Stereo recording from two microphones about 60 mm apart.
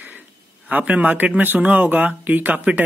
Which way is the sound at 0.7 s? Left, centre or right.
Right.